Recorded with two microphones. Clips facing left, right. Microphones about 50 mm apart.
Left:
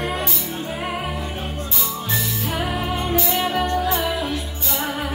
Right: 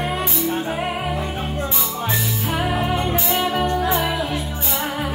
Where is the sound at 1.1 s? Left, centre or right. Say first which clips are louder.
Right 3 dB; right.